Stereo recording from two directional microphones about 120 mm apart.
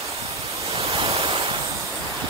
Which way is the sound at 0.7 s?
55° right (ahead or behind).